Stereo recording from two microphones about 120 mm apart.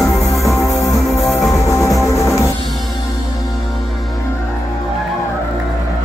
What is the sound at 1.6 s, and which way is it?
Music, 25° left (ahead or behind).